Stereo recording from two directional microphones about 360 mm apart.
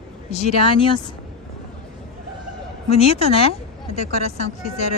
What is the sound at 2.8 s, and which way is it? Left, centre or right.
Speech, centre.